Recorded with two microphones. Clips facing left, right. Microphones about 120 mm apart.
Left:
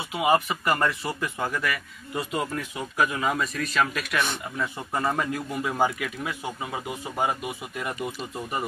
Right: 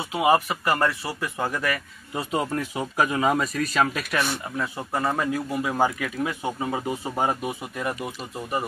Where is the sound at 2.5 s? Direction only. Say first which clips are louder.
Right 4 dB; 30° right (ahead or behind).